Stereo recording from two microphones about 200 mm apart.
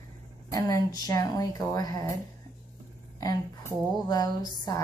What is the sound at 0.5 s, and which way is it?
A woman's voice, 20° left (ahead or behind).